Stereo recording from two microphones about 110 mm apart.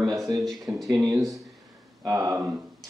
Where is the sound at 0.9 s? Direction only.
35° right (ahead or behind).